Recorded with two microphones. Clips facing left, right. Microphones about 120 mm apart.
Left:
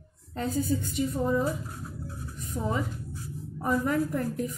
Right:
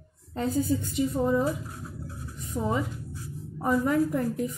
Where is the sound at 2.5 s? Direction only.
20° right (ahead or behind).